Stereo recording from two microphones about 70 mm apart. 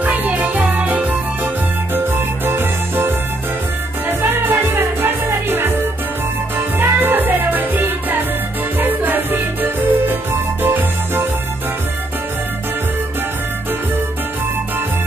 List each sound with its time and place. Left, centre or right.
0.0 s music: right
2.1 s music: right
4.5 s music: right
6.8 s music: right